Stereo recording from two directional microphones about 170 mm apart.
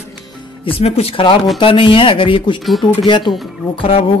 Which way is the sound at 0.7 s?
35° left (ahead or behind).